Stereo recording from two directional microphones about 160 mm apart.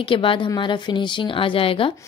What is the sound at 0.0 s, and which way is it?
A woman's voice, 35° left (ahead or behind).